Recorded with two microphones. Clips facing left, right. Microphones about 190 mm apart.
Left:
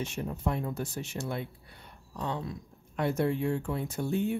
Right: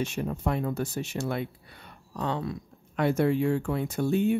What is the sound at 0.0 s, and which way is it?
Speech, 80° right.